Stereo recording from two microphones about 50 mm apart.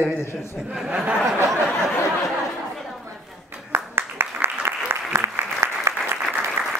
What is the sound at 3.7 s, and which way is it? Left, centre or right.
Applause, right.